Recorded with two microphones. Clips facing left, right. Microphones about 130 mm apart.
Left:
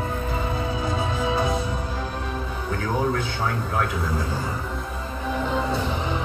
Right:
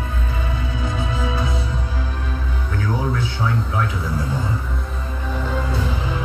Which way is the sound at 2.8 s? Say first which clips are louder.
Right 1 dB; 55° left (ahead or behind).